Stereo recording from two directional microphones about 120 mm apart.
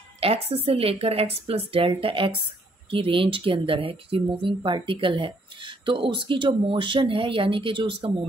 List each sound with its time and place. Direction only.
0.2 s speech: 55° right (ahead or behind)